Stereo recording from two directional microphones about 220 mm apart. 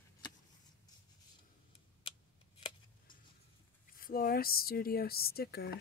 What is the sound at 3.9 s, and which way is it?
Speech, 40° left (ahead or behind).